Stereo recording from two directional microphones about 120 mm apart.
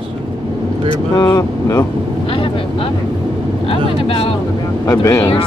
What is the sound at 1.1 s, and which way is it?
Vehicle, 25° left (ahead or behind).